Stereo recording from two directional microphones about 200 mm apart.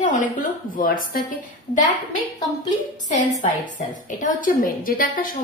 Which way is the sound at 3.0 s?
40° left (ahead or behind).